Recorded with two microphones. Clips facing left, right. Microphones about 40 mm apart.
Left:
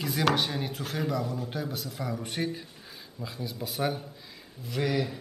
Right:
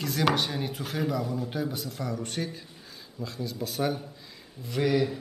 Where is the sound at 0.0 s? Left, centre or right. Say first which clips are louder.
Even; centre.